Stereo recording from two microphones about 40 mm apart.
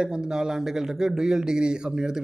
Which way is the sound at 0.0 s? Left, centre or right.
Centre.